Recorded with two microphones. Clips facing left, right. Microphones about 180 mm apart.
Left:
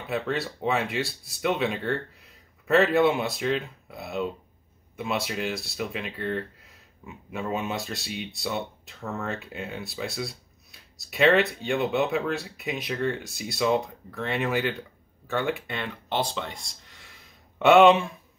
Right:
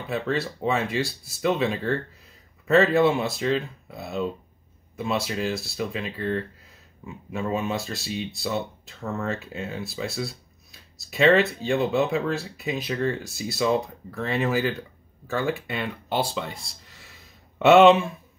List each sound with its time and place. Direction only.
0.1 s speech: centre (ahead or behind)